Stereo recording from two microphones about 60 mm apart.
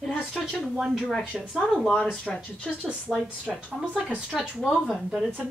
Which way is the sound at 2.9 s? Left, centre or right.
Centre.